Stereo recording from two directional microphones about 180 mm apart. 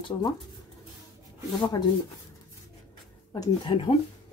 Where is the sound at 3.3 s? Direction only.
25° left (ahead or behind).